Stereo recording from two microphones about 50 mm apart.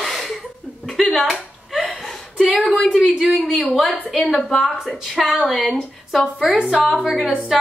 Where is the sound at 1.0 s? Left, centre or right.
Centre.